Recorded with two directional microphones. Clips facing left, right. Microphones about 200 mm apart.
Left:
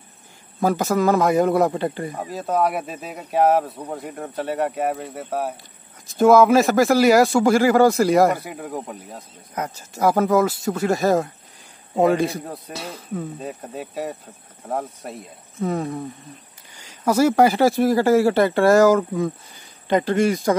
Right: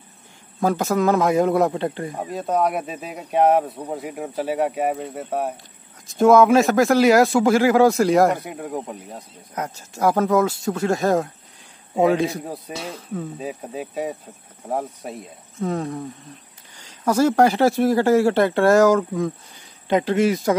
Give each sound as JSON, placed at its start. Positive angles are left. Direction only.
{"t": 0.6, "sound": "speech", "side_deg": 0}
{"t": 17.0, "sound": "speech", "side_deg": 5}